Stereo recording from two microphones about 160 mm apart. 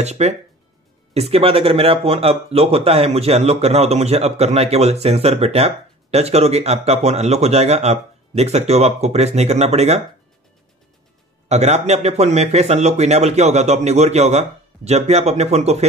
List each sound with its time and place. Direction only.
0.0 s a man's voice: 45° right (ahead or behind)
11.4 s a man's voice: 45° right (ahead or behind)